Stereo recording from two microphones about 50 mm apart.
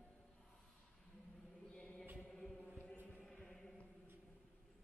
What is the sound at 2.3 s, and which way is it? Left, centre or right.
Chant, centre.